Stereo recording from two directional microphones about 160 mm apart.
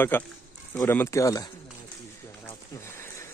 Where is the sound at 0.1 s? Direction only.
10° left (ahead or behind).